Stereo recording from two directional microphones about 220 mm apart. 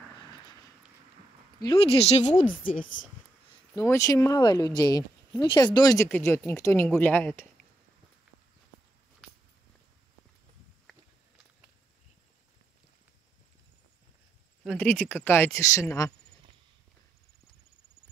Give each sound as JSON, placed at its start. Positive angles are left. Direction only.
{"t": 1.6, "sound": "a woman's voice", "side_deg": 25}
{"t": 3.4, "sound": "speech", "side_deg": 15}
{"t": 14.8, "sound": "speech", "side_deg": 5}